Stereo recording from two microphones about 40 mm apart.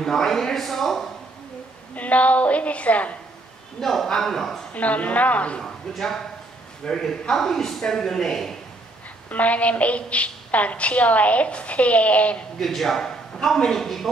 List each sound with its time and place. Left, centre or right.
0.0 s speech: centre
2.0 s a woman's voice: left
3.8 s speech: centre
4.7 s a woman's voice: left
5.6 s a man's voice: centre
9.3 s a woman's voice: left
12.5 s speech: centre